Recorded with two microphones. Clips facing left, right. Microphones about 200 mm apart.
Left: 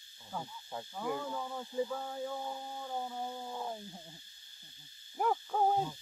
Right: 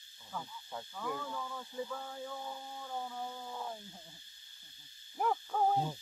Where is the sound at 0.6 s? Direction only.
20° left (ahead or behind).